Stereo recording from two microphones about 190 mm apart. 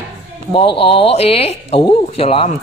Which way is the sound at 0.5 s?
30° left (ahead or behind).